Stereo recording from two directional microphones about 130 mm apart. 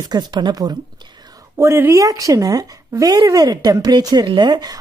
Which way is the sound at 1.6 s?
20° right (ahead or behind).